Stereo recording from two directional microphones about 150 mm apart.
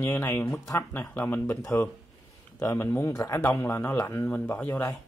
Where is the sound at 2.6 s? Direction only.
20° left (ahead or behind).